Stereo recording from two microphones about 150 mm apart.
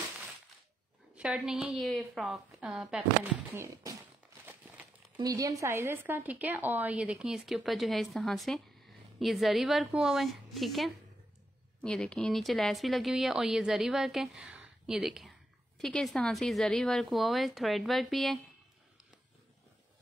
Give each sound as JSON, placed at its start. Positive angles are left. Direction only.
{"t": 1.1, "sound": "speech", "side_deg": -5}
{"t": 3.5, "sound": "a sound", "side_deg": -20}
{"t": 5.1, "sound": "speech", "side_deg": -25}